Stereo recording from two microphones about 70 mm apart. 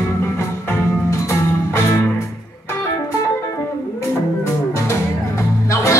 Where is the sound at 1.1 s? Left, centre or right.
Left.